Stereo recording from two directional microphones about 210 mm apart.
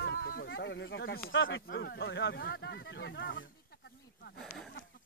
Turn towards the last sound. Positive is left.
turn(degrees=0)  # may be behind; listen again after turning